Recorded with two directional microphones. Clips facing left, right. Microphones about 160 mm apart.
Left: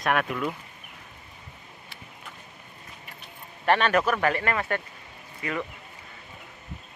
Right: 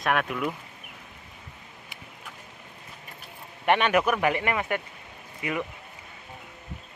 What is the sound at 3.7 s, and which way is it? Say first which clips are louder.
Speech: even; 15° right (ahead or behind).